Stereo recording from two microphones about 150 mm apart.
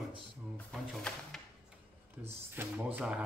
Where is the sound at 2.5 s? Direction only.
15° right (ahead or behind).